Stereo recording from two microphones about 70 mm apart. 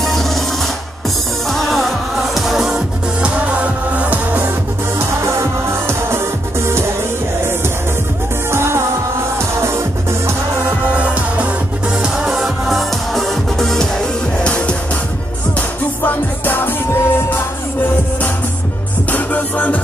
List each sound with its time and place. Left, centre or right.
0.0 s music: centre
1.5 s music: centre; by 4.5 s right
4.9 s music: right
8.5 s music: right
12.0 s music: centre
14.4 s music: centre
16.0 s music: left
19.1 s music: left